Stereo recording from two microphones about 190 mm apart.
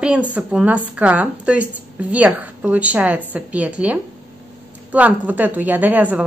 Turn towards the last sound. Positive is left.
turn(degrees=-10)  # may be behind; listen again after turning